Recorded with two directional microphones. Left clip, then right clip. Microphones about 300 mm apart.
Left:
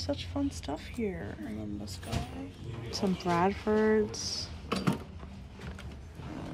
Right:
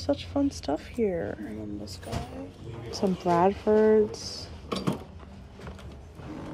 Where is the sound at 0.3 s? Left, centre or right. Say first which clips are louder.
Right 7 dB; left.